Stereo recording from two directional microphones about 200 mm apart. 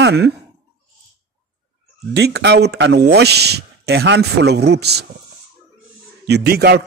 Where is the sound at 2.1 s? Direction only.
55° right (ahead or behind).